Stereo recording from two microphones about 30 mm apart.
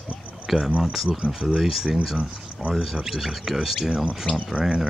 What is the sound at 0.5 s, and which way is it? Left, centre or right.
Speech, centre.